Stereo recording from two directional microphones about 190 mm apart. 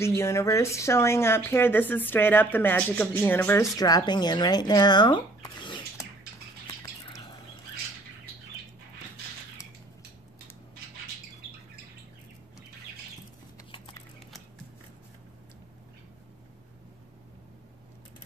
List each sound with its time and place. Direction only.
0.0 s speech: 15° left (ahead or behind)
6.7 s bird: 20° left (ahead or behind)
13.6 s a sound: 15° left (ahead or behind)